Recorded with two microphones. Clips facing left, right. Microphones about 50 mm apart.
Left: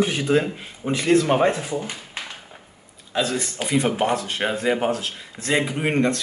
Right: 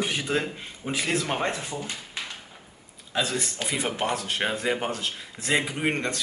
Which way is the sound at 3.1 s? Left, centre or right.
Centre.